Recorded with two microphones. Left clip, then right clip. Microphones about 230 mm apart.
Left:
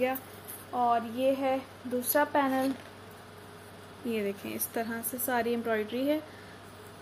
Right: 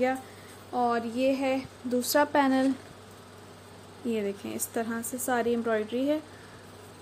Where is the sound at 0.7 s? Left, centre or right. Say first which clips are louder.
Even; right.